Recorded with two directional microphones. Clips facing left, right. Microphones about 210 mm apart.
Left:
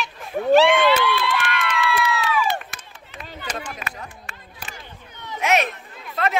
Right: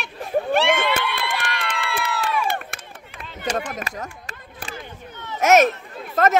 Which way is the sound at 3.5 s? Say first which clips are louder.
Right 5 dB; 45° right (ahead or behind).